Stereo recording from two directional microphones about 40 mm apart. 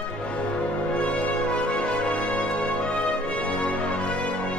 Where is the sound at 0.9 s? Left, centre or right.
Left.